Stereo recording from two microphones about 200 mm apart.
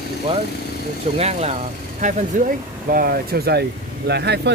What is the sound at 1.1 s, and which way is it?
Speech, 30° right (ahead or behind).